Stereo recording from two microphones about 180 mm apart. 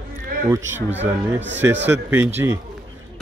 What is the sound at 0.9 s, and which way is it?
Speech, 80° right.